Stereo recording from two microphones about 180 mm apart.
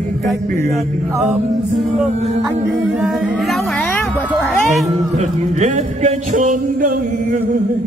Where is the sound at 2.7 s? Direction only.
5° right (ahead or behind).